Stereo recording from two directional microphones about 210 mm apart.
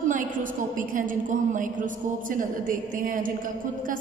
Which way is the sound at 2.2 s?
40° right (ahead or behind).